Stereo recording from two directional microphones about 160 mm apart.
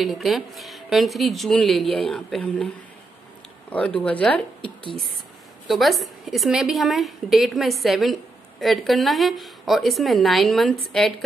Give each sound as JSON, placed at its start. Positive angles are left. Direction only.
{"t": 0.0, "sound": "a woman's voice", "side_deg": 0}
{"t": 3.7, "sound": "speech", "side_deg": 5}
{"t": 4.6, "sound": "a sound", "side_deg": 35}
{"t": 5.7, "sound": "a woman's voice", "side_deg": 0}